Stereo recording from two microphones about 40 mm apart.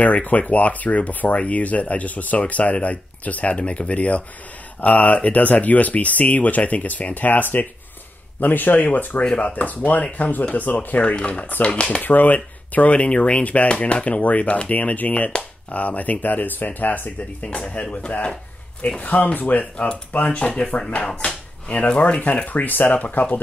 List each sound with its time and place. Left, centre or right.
0.0 s speech: left
11.0 s speech: left
12.0 s speech: left
12.7 s speech: left
17.4 s speech: left
22.2 s speech: left